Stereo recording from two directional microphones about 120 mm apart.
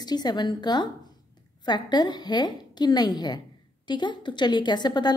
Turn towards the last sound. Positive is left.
turn(degrees=35)  # may be behind; listen again after turning